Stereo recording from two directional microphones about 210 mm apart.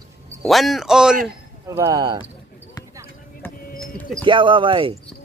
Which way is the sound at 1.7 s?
15° right (ahead or behind).